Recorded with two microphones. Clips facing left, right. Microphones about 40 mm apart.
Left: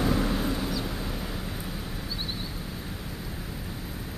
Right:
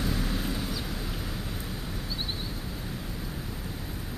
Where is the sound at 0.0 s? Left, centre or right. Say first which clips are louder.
Left 5 dB; centre.